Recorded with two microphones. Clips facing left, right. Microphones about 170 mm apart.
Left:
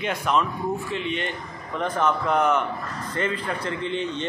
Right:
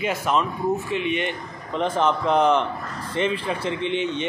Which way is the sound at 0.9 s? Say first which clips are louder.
Right 3 dB; 15° right (ahead or behind).